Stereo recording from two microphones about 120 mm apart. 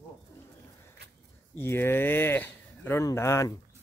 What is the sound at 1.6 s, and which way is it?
Speech, 20° left (ahead or behind).